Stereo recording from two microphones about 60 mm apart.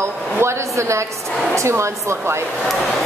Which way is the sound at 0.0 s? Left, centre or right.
Right.